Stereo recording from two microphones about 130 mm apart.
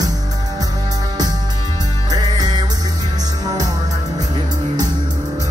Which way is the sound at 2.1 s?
35° right (ahead or behind).